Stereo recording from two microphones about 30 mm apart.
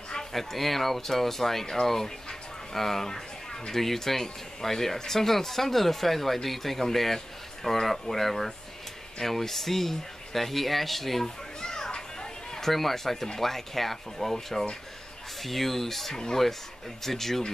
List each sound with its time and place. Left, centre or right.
0.3 s speech: centre
11.2 s children playing: left
12.5 s speech: centre